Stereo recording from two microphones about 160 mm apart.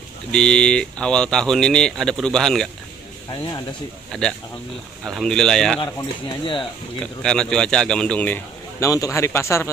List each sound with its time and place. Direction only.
0.3 s speech: 5° left (ahead or behind)
3.3 s speech: 25° left (ahead or behind)
4.1 s speech: 5° left (ahead or behind)
5.8 s speech: 30° left (ahead or behind)
7.2 s a man's voice: 5° left (ahead or behind)